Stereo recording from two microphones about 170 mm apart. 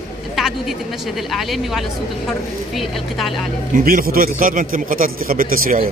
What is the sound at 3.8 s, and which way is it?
A man's voice, 55° right (ahead or behind).